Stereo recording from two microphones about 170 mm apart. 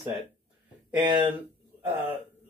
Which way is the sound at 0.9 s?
25° right (ahead or behind).